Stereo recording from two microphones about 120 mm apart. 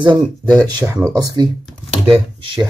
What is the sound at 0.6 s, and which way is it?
Speech, 25° right (ahead or behind).